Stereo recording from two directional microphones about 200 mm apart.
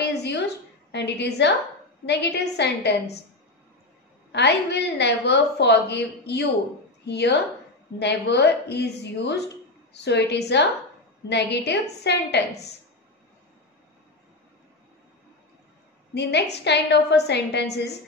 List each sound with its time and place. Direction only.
0.0 s a sound: 55° left (ahead or behind)
0.9 s a woman's voice: 55° left (ahead or behind)
4.3 s a woman's voice: 60° left (ahead or behind)
16.2 s a woman's voice: 55° left (ahead or behind)